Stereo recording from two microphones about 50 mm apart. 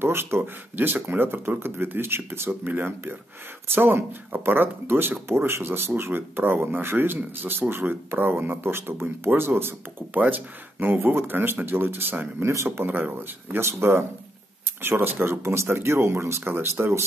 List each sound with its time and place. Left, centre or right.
0.0 s speech: right
0.4 s speech: right
10.1 s speech: right
12.4 s speech: right
13.6 s speech: right
15.5 s speech: right